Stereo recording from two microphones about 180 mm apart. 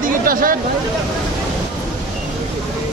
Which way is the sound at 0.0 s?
50° right (ahead or behind).